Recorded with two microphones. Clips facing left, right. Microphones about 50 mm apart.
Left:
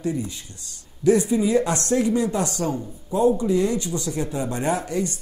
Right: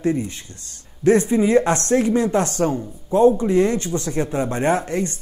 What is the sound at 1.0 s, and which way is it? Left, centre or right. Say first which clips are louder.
Speech: right 3 dB; right.